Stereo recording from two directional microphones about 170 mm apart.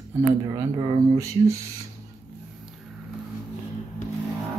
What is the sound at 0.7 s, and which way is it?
Speech, 25° right (ahead or behind).